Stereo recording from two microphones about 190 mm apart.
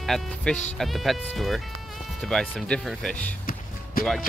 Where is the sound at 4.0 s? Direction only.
50° left (ahead or behind).